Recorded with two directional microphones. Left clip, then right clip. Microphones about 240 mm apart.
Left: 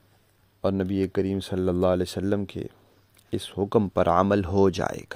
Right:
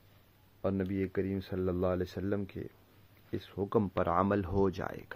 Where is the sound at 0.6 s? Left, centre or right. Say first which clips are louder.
Left 8 dB; left.